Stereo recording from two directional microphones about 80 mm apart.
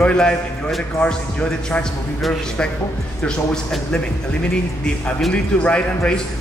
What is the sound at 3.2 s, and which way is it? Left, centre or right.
Speech, centre.